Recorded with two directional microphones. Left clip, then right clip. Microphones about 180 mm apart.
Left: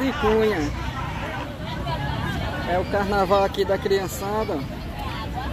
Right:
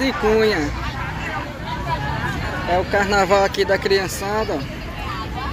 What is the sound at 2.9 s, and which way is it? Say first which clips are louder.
Speech: right 5 dB; 15° right (ahead or behind).